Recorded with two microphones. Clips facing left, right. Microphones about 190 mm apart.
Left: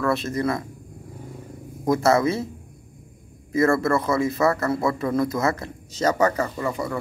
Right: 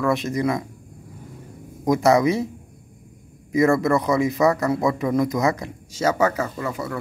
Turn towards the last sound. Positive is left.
turn(degrees=-5)  # may be behind; listen again after turning